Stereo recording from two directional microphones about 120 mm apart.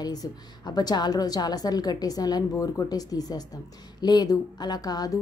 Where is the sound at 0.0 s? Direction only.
30° left (ahead or behind).